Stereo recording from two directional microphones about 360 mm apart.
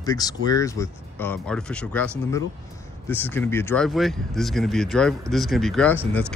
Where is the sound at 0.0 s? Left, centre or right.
Centre.